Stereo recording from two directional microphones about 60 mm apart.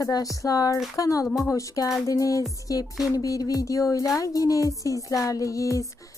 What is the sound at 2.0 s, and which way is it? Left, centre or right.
Music, left.